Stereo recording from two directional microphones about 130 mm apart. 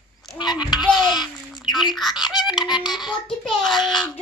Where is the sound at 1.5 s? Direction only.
Centre (ahead or behind).